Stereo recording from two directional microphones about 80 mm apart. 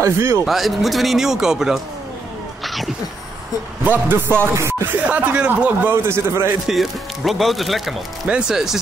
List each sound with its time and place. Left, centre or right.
0.0 s a man's voice: right
0.5 s speech: centre
2.6 s cat: centre
3.8 s a man's voice: right
4.6 s speech: right
5.0 s speech: centre
5.9 s a man's voice: right
6.7 s speech: centre